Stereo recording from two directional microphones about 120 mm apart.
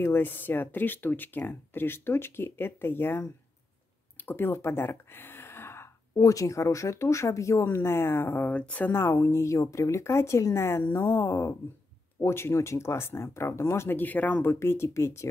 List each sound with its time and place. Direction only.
0.0 s speech: 15° left (ahead or behind)